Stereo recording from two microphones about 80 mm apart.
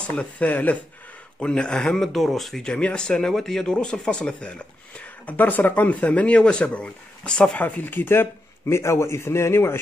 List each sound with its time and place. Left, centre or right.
0.0 s speech: centre
7.6 s speech: left